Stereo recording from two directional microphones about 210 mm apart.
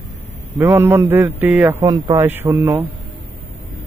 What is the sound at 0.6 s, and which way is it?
A man's voice, 10° right (ahead or behind).